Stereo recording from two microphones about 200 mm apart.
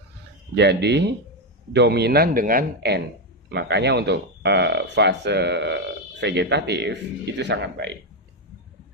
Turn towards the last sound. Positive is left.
turn(degrees=-60)  # may be behind; listen again after turning